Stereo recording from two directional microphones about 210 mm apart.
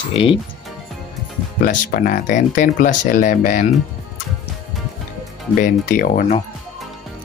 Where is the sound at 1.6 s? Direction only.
40° left (ahead or behind).